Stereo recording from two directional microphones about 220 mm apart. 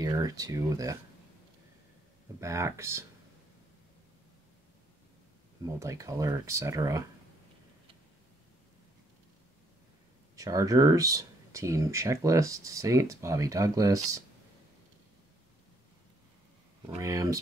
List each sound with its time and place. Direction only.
0.0 s speech: 15° right (ahead or behind)
2.4 s speech: 15° right (ahead or behind)
5.7 s speech: 15° right (ahead or behind)
10.3 s speech: 15° right (ahead or behind)
16.8 s speech: 15° right (ahead or behind)